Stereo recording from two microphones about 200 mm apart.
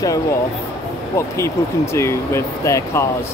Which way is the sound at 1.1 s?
15° left (ahead or behind).